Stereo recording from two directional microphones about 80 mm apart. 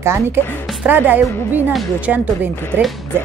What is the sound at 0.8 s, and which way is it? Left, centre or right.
Speech, right.